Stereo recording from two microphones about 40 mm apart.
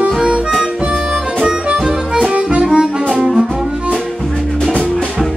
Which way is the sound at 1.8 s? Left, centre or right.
Centre.